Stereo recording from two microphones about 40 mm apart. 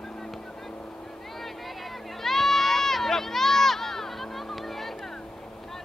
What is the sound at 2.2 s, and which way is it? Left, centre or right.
Run, centre.